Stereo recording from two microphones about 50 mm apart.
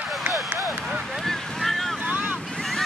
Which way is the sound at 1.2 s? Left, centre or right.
Centre.